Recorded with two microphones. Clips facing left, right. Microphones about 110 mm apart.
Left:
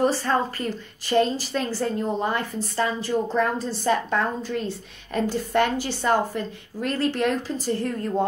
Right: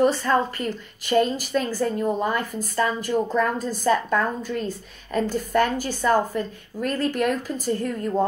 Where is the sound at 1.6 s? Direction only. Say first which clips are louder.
Right 2 dB; 45° right (ahead or behind).